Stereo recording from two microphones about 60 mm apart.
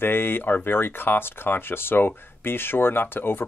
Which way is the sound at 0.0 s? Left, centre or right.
Left.